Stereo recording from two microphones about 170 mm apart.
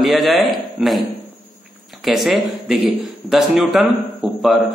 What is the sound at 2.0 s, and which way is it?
A man's voice, centre (ahead or behind).